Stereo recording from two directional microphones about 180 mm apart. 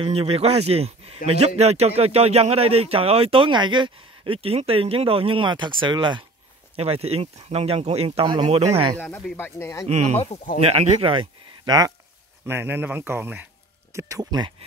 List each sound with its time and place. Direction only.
0.0 s speech: 30° right (ahead or behind)
9.0 s speech: 10° left (ahead or behind)
10.6 s speech: 35° right (ahead or behind)
12.4 s speech: 10° right (ahead or behind)